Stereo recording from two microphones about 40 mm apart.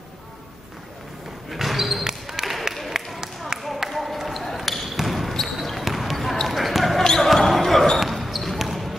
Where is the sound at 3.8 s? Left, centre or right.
Centre.